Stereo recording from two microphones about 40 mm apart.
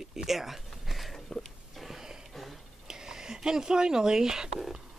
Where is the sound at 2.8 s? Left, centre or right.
Centre.